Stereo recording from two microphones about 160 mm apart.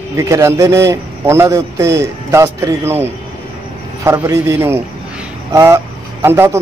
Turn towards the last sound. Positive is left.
turn(degrees=-15)  # may be behind; listen again after turning